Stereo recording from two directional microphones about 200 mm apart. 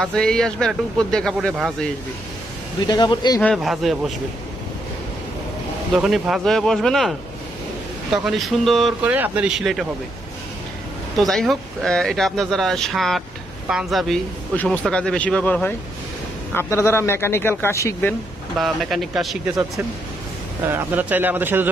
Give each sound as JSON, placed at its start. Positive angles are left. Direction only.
{"t": 0.0, "sound": "speech", "side_deg": 5}
{"t": 2.9, "sound": "speech", "side_deg": 20}
{"t": 3.3, "sound": "speech", "side_deg": 5}
{"t": 5.9, "sound": "speech", "side_deg": 0}
{"t": 8.2, "sound": "speech", "side_deg": 0}
{"t": 11.1, "sound": "speech", "side_deg": 0}
{"t": 18.6, "sound": "speech", "side_deg": 0}
{"t": 20.7, "sound": "a man's voice", "side_deg": -10}